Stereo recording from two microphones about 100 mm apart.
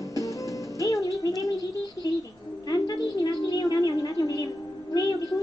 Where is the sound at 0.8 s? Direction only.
35° left (ahead or behind).